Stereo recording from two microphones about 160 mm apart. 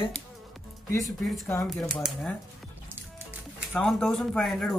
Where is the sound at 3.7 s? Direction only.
5° left (ahead or behind).